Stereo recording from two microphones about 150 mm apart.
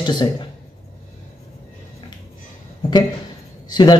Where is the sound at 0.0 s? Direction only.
30° left (ahead or behind).